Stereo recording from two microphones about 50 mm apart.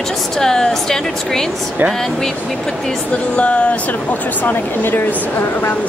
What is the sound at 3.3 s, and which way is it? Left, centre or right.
Speech, left.